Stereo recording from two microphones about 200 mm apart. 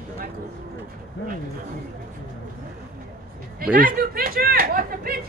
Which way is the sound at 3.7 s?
45° right (ahead or behind).